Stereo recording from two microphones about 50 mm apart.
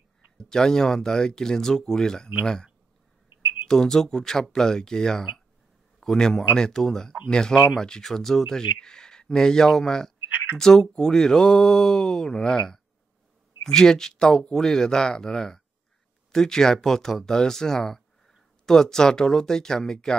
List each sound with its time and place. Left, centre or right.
0.4 s a man's voice: centre
10.3 s a sound: right
10.6 s speech: centre